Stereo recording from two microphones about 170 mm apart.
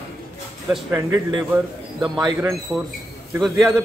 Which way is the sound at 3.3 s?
Centre (ahead or behind).